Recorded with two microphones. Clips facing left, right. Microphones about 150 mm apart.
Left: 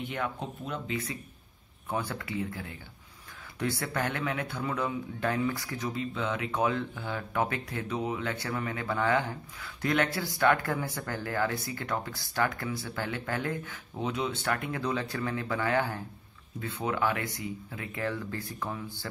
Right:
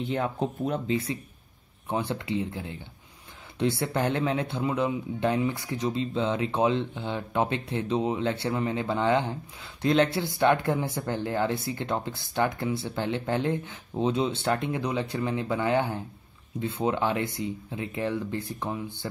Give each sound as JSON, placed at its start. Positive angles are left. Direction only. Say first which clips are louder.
{"t": 0.0, "sound": "speech", "louder": "right 6 dB", "side_deg": -30}